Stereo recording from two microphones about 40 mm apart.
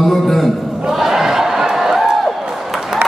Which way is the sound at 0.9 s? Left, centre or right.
Centre.